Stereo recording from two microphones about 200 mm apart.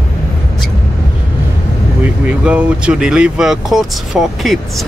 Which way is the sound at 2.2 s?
5° right (ahead or behind).